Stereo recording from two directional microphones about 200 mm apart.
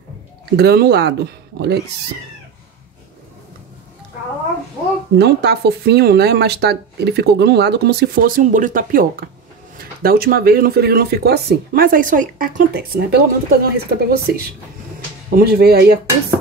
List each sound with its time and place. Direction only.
0.6 s speech: 55° right (ahead or behind)
5.1 s speech: 55° right (ahead or behind)